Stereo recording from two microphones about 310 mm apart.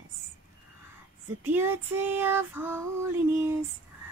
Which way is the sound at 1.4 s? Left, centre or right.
Centre.